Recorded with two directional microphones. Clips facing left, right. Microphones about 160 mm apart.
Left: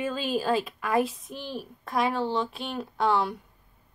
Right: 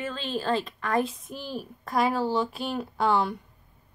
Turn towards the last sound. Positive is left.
turn(degrees=0)  # may be behind; listen again after turning